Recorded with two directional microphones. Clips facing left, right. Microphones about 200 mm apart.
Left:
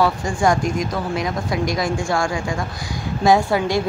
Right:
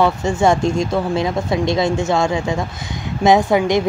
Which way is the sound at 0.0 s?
25° right (ahead or behind).